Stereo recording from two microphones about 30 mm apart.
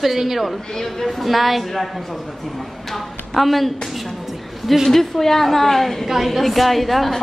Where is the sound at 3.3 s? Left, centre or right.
Centre.